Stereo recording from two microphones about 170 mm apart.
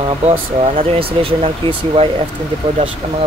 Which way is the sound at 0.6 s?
35° right (ahead or behind).